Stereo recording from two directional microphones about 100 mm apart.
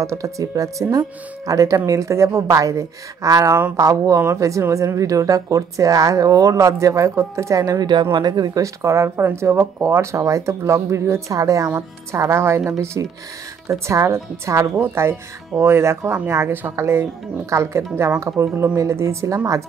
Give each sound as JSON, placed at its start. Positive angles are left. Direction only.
{"t": 0.0, "sound": "speech", "side_deg": -30}